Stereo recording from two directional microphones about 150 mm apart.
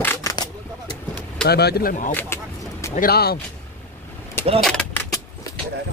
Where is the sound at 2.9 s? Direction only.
90° left.